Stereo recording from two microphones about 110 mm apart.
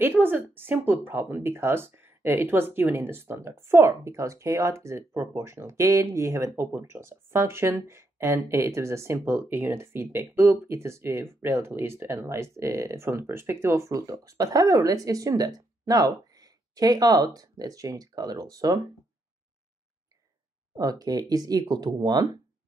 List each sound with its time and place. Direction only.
0.0 s speech: 20° right (ahead or behind); by 18.8 s 35° right (ahead or behind)
20.7 s speech: 35° right (ahead or behind)